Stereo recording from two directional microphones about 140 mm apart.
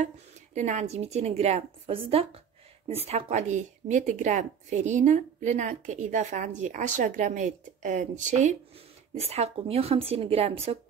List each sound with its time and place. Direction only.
0.6 s a woman's voice: 55° right (ahead or behind)